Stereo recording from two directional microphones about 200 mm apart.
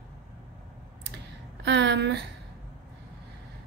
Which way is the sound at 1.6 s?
60° right (ahead or behind).